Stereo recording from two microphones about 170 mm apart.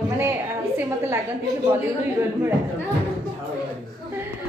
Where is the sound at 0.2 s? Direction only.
15° right (ahead or behind).